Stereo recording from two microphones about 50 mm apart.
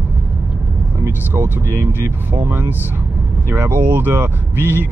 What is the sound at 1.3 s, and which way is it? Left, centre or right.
Speech, right.